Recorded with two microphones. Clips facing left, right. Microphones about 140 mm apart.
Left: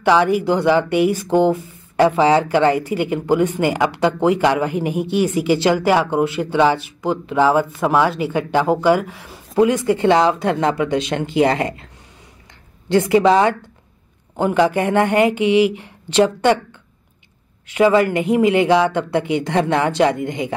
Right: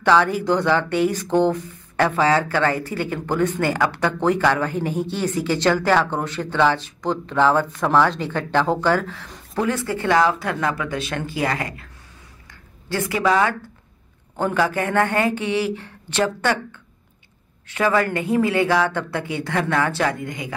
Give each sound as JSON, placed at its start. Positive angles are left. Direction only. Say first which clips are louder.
{"t": 0.0, "sound": "a man's voice", "louder": "left 3 dB", "side_deg": 15}
{"t": 17.6, "sound": "a man's voice", "louder": "left 6 dB", "side_deg": 15}